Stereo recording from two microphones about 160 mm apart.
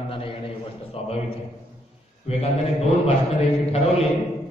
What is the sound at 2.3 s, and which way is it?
Speech, 40° left (ahead or behind).